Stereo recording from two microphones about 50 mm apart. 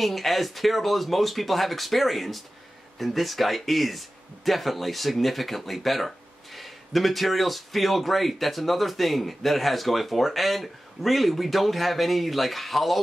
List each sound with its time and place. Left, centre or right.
0.0 s speech: centre